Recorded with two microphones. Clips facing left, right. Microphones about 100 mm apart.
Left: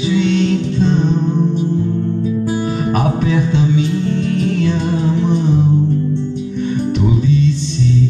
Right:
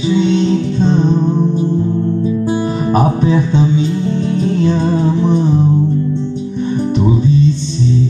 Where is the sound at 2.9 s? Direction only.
30° right (ahead or behind).